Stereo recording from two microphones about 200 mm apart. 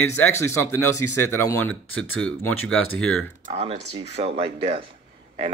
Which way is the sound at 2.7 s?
90° left.